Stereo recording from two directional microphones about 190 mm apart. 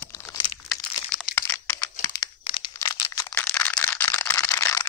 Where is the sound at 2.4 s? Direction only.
25° left (ahead or behind).